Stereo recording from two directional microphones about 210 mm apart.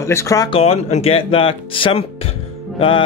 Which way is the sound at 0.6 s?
30° left (ahead or behind).